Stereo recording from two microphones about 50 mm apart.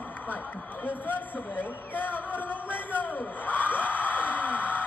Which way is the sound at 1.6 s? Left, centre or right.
Left.